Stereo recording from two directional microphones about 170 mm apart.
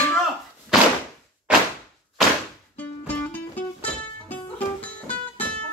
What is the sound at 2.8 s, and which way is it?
Music, 10° left (ahead or behind).